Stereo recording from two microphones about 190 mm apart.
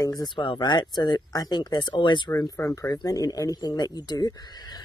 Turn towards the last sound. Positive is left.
turn(degrees=20)  # may be behind; listen again after turning